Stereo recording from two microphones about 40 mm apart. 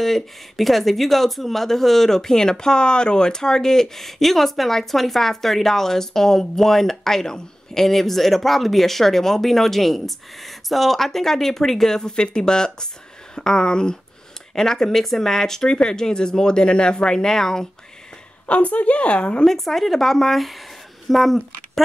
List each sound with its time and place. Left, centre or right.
0.0 s speech: centre
18.5 s speech: left
19.4 s speech: centre